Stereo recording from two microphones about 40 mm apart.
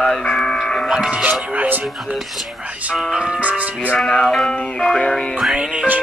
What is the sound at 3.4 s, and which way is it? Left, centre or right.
Speech, right.